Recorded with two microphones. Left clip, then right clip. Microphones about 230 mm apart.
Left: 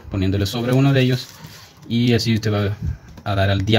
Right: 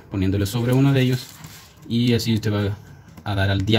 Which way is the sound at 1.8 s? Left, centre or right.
Centre.